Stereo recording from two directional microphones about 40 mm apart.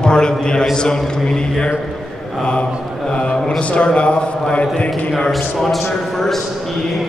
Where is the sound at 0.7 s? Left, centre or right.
Centre.